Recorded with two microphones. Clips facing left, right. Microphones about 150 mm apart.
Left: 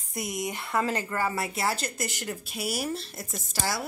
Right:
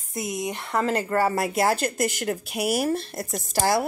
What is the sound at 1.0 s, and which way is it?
A woman's voice, 40° right (ahead or behind).